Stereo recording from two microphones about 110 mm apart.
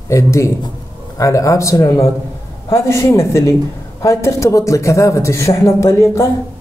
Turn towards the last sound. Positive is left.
turn(degrees=25)  # may be behind; listen again after turning